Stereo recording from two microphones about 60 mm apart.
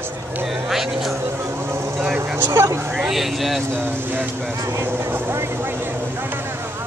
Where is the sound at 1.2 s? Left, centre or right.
Right.